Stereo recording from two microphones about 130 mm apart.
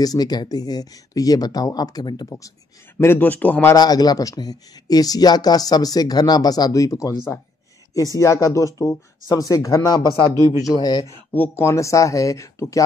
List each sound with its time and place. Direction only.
0.0 s speech: 30° left (ahead or behind)
3.0 s speech: 15° left (ahead or behind)
3.7 s speech: 30° left (ahead or behind)
10.3 s speech: 30° right (ahead or behind)
10.6 s speech: 30° left (ahead or behind)
11.3 s speech: 15° left (ahead or behind)